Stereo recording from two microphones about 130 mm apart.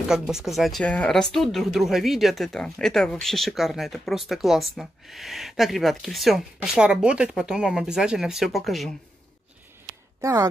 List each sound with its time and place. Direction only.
0.3 s speech: centre (ahead or behind)
10.2 s a woman's voice: 25° right (ahead or behind)